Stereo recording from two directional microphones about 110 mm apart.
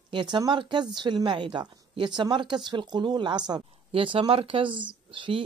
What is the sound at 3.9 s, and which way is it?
A woman's voice, 55° right (ahead or behind).